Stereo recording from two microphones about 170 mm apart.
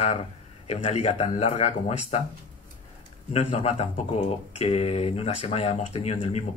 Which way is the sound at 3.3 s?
40° left (ahead or behind).